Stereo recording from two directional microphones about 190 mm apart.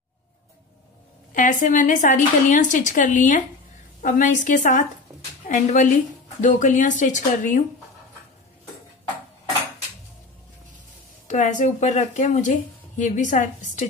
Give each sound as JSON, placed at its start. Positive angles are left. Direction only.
{"t": 1.3, "sound": "a woman's voice", "side_deg": 45}
{"t": 11.2, "sound": "speech", "side_deg": 40}